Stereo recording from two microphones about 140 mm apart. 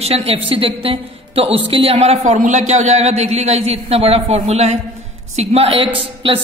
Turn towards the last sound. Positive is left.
turn(degrees=-40)  # may be behind; listen again after turning